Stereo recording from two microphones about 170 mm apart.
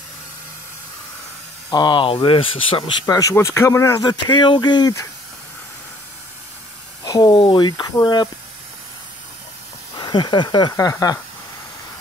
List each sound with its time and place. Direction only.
1.7 s speech: 25° left (ahead or behind)
7.1 s speech: 20° left (ahead or behind)
9.9 s speech: 25° left (ahead or behind)